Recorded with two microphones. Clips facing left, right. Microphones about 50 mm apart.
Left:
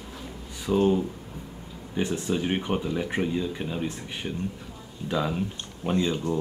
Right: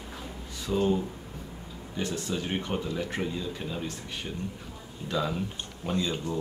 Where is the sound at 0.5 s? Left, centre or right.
Centre.